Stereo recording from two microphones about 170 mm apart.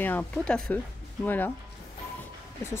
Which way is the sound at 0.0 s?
10° left (ahead or behind).